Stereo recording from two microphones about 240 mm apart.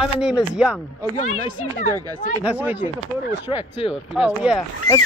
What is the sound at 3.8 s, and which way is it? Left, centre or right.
Speech, left.